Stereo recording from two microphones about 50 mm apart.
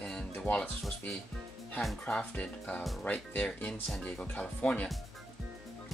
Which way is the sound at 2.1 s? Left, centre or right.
Left.